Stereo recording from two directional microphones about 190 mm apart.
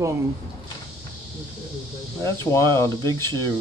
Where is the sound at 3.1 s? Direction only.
20° right (ahead or behind).